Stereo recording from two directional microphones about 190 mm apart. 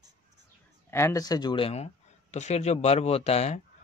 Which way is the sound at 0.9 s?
15° left (ahead or behind).